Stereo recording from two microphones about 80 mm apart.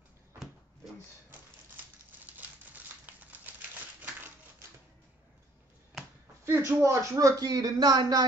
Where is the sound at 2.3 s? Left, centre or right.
Right.